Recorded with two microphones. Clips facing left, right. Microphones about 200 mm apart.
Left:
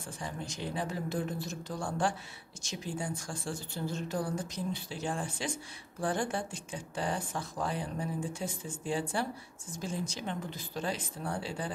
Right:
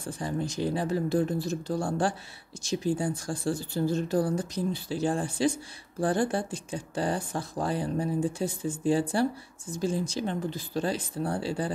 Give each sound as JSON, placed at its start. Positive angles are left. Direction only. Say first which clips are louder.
{"t": 0.0, "sound": "speech", "louder": "right 9 dB", "side_deg": -35}